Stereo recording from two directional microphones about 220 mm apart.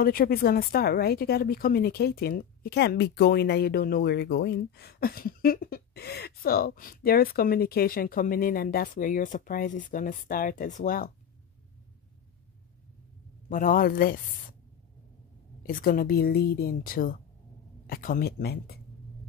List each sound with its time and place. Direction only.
0.0 s speech: 40° left (ahead or behind)
13.5 s a woman's voice: 40° left (ahead or behind)
15.6 s a woman's voice: 40° left (ahead or behind)